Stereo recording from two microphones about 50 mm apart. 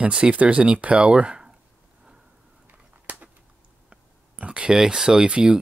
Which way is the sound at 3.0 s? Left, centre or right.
Right.